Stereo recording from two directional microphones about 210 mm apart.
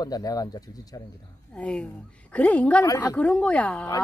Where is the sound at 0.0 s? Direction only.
15° left (ahead or behind).